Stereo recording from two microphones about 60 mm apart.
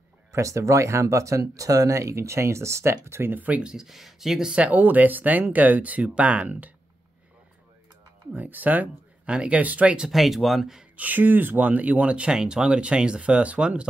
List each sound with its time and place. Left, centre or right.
0.3 s speech: right
3.4 s speech: right
3.7 s speech: centre
4.6 s speech: right
8.3 s speech: right
10.0 s speech: centre
11.0 s speech: right